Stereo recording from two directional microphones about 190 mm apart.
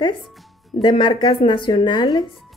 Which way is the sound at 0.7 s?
25° left (ahead or behind).